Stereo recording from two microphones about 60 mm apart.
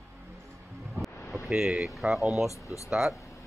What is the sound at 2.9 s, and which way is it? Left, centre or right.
Speech, centre.